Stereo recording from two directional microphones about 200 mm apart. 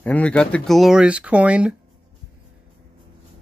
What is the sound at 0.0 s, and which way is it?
Speech, 5° left (ahead or behind).